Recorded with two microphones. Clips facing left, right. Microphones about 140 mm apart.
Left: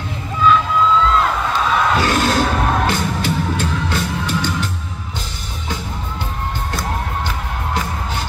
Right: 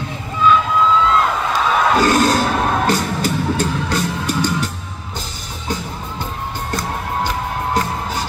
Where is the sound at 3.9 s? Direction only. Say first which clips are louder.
Right 1 dB; 40° right (ahead or behind).